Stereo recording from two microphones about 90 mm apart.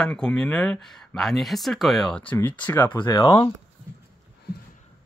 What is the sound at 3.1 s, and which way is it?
Speech, 55° left (ahead or behind).